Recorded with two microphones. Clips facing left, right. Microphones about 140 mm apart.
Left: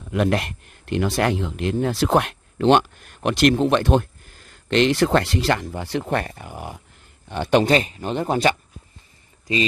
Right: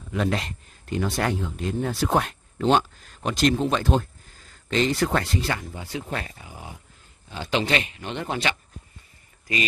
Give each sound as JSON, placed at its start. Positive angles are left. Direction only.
{"t": 0.1, "sound": "speech", "side_deg": 65}
{"t": 4.6, "sound": "a man's voice", "side_deg": 75}
{"t": 7.6, "sound": "speech", "side_deg": 35}